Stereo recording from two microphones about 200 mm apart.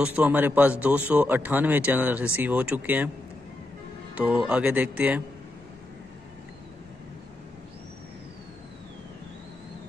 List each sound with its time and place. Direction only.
0.0 s speech: 5° right (ahead or behind)
4.1 s speech: 5° right (ahead or behind)